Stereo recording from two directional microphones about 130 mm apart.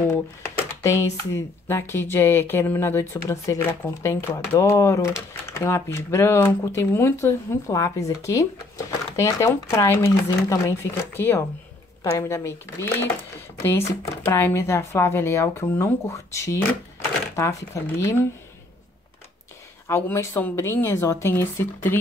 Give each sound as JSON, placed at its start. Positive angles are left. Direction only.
{"t": 0.4, "sound": "speech", "side_deg": 20}
{"t": 19.9, "sound": "speech", "side_deg": 15}